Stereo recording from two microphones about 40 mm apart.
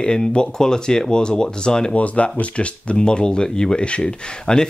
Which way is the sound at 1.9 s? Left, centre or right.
Left.